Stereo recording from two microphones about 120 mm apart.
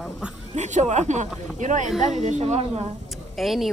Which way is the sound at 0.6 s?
75° right (ahead or behind).